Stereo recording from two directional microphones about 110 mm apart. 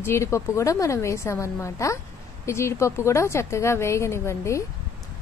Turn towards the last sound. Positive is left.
turn(degrees=25)  # may be behind; listen again after turning